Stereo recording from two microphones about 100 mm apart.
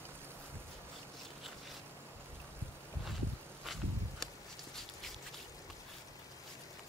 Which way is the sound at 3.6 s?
Centre (ahead or behind).